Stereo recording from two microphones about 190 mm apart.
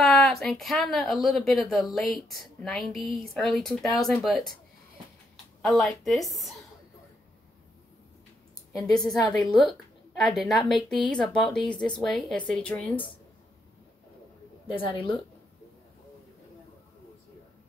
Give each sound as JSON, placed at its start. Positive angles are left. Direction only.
{"t": 0.0, "sound": "speech", "side_deg": 0}
{"t": 5.6, "sound": "speech", "side_deg": 0}
{"t": 8.8, "sound": "a woman's voice", "side_deg": 20}
{"t": 9.3, "sound": "speech", "side_deg": 0}
{"t": 14.7, "sound": "a woman's voice", "side_deg": 25}